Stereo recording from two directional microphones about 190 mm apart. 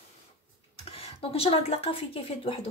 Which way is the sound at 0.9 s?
30° left (ahead or behind).